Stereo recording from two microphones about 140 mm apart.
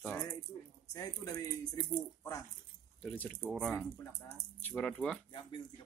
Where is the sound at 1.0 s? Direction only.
25° left (ahead or behind).